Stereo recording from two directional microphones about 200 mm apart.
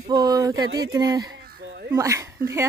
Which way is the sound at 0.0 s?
20° right (ahead or behind).